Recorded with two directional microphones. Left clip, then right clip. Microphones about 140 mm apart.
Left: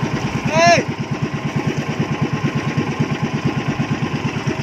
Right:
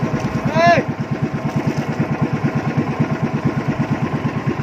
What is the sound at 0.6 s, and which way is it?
Vehicle, 35° left (ahead or behind).